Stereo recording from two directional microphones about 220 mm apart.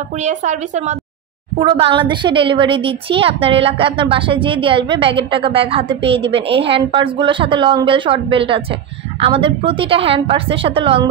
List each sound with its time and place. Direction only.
0.2 s a woman's voice: 30° right (ahead or behind)